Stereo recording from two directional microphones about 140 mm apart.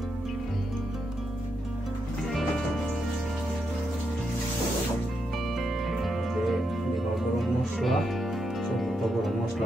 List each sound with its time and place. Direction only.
5.6 s music: centre (ahead or behind)